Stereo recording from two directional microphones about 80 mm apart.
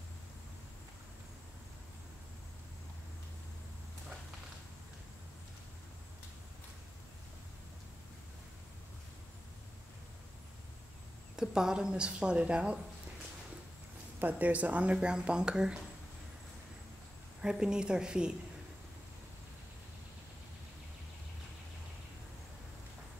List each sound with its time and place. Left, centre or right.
11.3 s speech: centre
14.2 s speech: centre
17.4 s speech: centre